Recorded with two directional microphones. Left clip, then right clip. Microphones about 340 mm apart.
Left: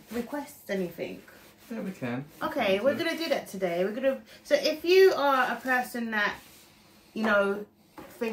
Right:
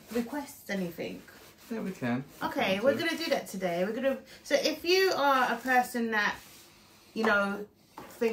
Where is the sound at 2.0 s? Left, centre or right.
Centre.